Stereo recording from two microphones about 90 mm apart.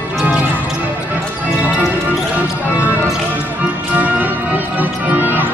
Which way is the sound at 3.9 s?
15° right (ahead or behind).